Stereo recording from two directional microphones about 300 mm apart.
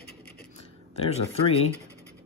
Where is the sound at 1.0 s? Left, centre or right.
Centre.